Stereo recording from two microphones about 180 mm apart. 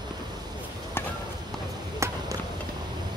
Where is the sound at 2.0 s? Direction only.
15° right (ahead or behind).